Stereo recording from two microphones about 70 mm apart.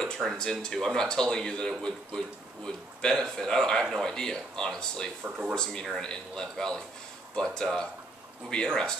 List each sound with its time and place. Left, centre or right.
0.0 s speech: centre